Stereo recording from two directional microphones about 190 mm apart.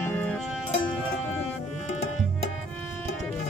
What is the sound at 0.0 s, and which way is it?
Music, 10° left (ahead or behind).